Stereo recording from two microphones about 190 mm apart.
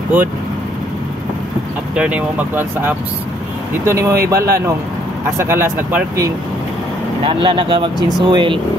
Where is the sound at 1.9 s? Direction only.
10° right (ahead or behind).